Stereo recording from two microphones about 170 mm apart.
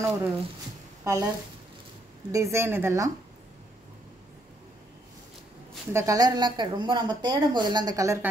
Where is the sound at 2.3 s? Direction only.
20° right (ahead or behind).